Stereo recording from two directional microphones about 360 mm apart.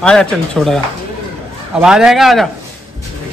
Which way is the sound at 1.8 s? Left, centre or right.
Centre.